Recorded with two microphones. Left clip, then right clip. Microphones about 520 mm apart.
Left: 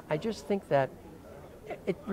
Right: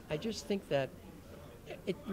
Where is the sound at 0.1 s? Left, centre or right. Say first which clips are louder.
Left 6 dB; centre.